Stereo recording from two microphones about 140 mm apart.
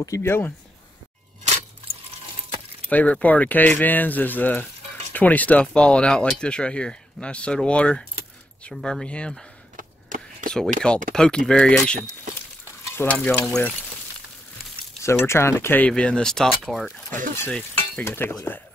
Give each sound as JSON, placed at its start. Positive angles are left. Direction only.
{"t": 0.0, "sound": "speech", "side_deg": 20}
{"t": 2.9, "sound": "speech", "side_deg": 10}
{"t": 9.8, "sound": "a sound", "side_deg": -75}
{"t": 10.8, "sound": "speech", "side_deg": 5}
{"t": 15.0, "sound": "speech", "side_deg": 20}
{"t": 17.5, "sound": "stir", "side_deg": 5}
{"t": 18.0, "sound": "speech", "side_deg": 15}